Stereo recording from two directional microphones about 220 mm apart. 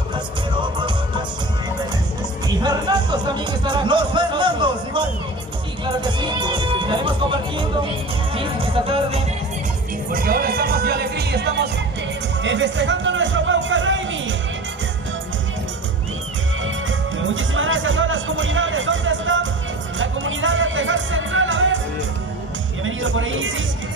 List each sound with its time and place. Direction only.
0.1 s music: 20° right (ahead or behind)
2.4 s music: 20° right (ahead or behind)
10.1 s music: 40° right (ahead or behind)
12.4 s music: 55° right (ahead or behind)
17.2 s music: 60° right (ahead or behind)
22.8 s speech: 65° right (ahead or behind)